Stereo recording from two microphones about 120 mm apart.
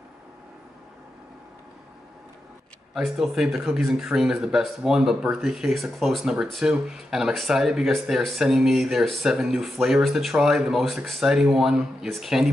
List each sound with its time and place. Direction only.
3.2 s speech: 5° right (ahead or behind)